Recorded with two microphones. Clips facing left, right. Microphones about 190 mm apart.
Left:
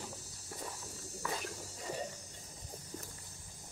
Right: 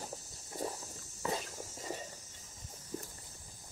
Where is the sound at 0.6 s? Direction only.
30° right (ahead or behind).